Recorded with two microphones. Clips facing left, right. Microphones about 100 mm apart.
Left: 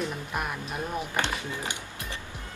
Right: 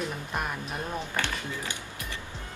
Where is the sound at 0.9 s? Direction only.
20° left (ahead or behind).